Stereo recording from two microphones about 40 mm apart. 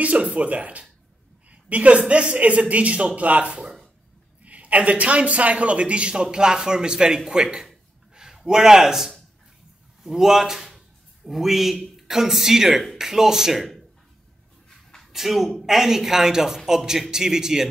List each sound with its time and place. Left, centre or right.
0.0 s a man's voice: right; by 7.2 s centre
7.5 s a sound: centre
10.0 s speech: centre
15.1 s speech: centre